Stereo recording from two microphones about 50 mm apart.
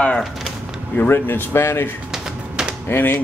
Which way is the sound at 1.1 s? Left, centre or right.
Left.